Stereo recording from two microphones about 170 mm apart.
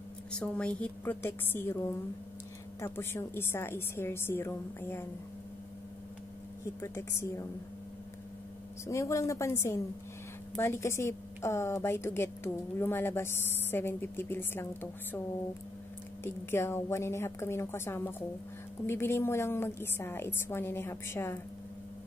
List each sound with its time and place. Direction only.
0.3 s a woman's voice: 5° left (ahead or behind)
2.8 s a woman's voice: 15° left (ahead or behind)
6.8 s a woman's voice: 15° left (ahead or behind)
8.8 s a woman's voice: 15° left (ahead or behind)
16.3 s a woman's voice: 15° left (ahead or behind)